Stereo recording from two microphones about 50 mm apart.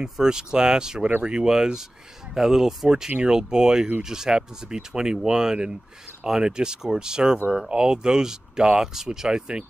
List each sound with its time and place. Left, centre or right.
0.0 s speech: centre